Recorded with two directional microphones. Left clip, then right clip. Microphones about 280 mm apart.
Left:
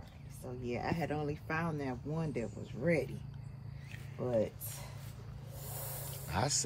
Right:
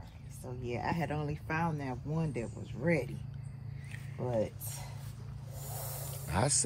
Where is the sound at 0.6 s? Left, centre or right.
Right.